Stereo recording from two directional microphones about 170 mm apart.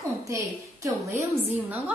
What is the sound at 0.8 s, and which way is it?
Speech, 15° right (ahead or behind).